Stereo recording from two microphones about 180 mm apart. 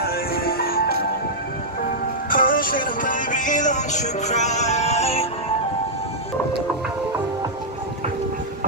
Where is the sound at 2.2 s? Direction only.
50° left (ahead or behind); by 5.3 s 35° left (ahead or behind).